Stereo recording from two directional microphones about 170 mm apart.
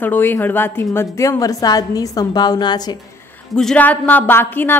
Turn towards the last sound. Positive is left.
turn(degrees=10)  # may be behind; listen again after turning